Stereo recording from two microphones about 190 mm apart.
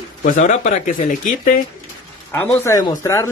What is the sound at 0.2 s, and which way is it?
Speech, 40° left (ahead or behind).